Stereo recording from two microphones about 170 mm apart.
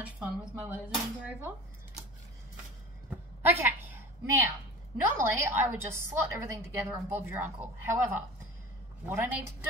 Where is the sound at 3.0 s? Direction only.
10° right (ahead or behind).